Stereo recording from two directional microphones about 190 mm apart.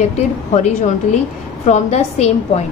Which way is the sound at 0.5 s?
35° left (ahead or behind).